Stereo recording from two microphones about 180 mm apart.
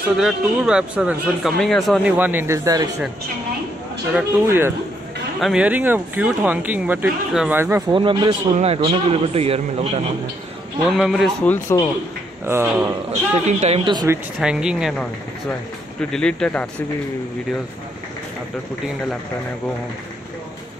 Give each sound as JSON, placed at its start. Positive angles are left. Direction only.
{"t": 0.2, "sound": "speech", "side_deg": -5}
{"t": 2.1, "sound": "speech", "side_deg": -10}
{"t": 4.1, "sound": "speech", "side_deg": -10}
{"t": 7.9, "sound": "a man's voice", "side_deg": -25}
{"t": 10.9, "sound": "speech", "side_deg": 0}
{"t": 12.4, "sound": "speech", "side_deg": -15}
{"t": 13.1, "sound": "a man's voice", "side_deg": -40}
{"t": 13.9, "sound": "speech", "side_deg": -15}